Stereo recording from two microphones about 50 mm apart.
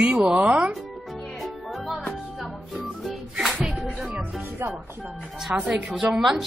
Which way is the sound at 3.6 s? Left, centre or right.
Centre.